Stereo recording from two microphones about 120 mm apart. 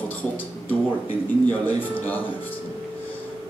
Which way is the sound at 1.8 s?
15° left (ahead or behind).